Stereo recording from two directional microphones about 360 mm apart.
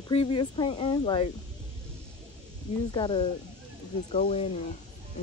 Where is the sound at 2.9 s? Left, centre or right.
Centre.